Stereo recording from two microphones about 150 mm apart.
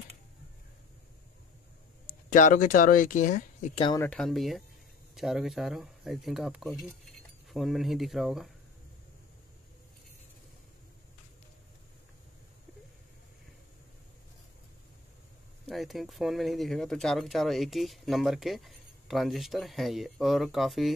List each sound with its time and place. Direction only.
2.0 s speech: 60° left (ahead or behind)
4.2 s speech: centre (ahead or behind)
15.6 s speech: centre (ahead or behind)